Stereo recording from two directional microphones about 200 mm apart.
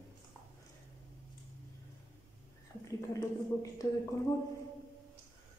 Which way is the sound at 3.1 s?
15° left (ahead or behind).